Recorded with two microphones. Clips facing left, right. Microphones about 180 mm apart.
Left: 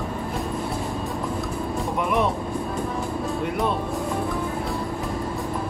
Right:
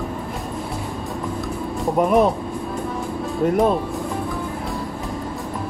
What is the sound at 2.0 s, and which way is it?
Speech, 40° right (ahead or behind).